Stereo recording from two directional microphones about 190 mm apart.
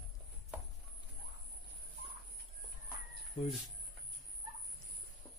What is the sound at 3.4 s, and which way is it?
Speech, 25° left (ahead or behind).